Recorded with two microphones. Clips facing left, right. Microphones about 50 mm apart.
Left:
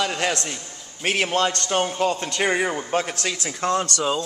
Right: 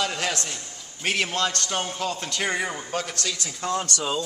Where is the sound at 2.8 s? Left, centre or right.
Left.